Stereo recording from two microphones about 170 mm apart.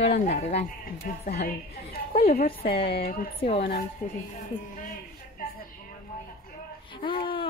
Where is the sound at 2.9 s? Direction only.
60° left (ahead or behind).